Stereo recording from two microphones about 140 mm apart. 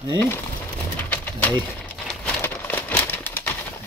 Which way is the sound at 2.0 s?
10° left (ahead or behind).